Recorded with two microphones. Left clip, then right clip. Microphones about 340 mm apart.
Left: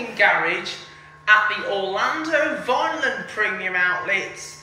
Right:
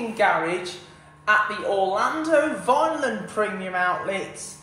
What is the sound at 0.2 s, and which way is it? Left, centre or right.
Speech, centre.